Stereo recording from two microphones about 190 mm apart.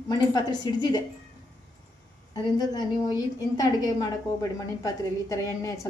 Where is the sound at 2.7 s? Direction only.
20° left (ahead or behind).